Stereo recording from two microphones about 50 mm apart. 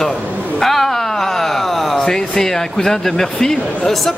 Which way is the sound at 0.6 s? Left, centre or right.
Centre.